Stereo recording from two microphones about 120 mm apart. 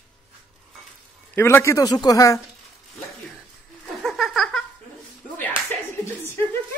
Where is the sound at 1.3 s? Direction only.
20° left (ahead or behind).